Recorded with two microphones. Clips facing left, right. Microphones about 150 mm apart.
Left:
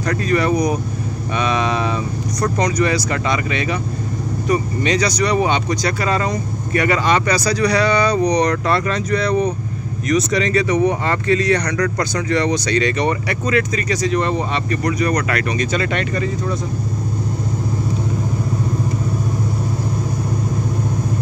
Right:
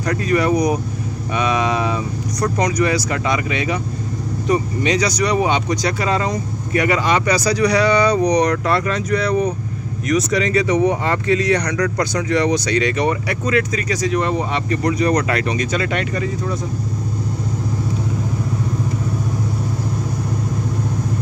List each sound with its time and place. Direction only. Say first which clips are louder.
0.0 s speech: even; 15° right (ahead or behind)
4.5 s speech: right 1 dB; 25° right (ahead or behind)
4.8 s speech: left 1 dB; 10° right (ahead or behind)
14.7 s speech: right 3 dB; 25° right (ahead or behind)
15.5 s speech: even; 5° right (ahead or behind)